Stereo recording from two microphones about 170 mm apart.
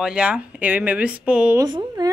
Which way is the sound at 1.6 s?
25° right (ahead or behind).